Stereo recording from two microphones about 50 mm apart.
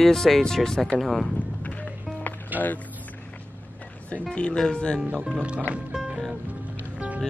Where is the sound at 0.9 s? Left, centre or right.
Centre.